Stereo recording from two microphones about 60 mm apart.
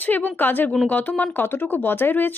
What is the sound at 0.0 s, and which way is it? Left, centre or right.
Speech, left.